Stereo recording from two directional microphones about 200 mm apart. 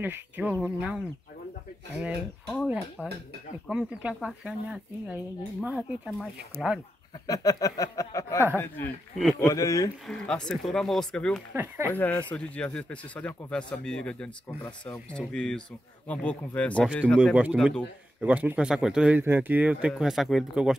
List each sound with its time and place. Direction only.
0.0 s speech: 10° right (ahead or behind)
3.6 s speech: 5° right (ahead or behind)
7.2 s speech: 20° left (ahead or behind)
10.0 s speech: 5° left (ahead or behind)
11.5 s speech: 10° right (ahead or behind)
11.9 s speech: 10° left (ahead or behind)
17.2 s speech: 5° right (ahead or behind)